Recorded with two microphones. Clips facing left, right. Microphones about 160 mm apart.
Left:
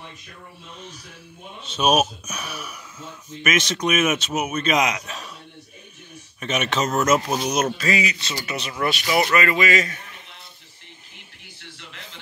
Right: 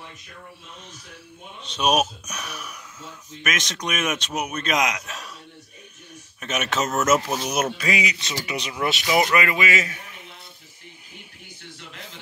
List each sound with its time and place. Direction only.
1.6 s a man's voice: 5° left (ahead or behind)
6.4 s a man's voice: 5° right (ahead or behind)
7.2 s speech: 15° left (ahead or behind)
7.5 s a man's voice: 10° right (ahead or behind)